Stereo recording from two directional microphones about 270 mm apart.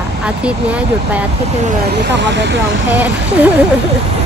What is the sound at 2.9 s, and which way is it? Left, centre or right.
Speech, centre.